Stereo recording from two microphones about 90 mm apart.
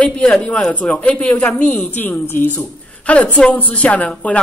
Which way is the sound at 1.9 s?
20° left (ahead or behind).